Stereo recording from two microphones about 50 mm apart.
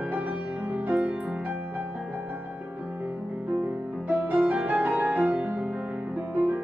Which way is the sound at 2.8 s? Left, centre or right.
Right.